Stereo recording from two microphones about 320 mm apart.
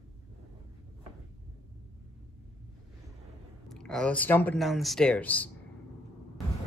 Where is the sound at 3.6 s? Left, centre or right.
Centre.